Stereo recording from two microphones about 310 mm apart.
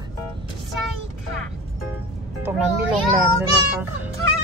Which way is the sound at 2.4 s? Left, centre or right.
Centre.